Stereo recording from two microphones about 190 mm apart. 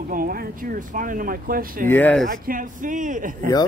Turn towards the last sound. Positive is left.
turn(degrees=-45)  # may be behind; listen again after turning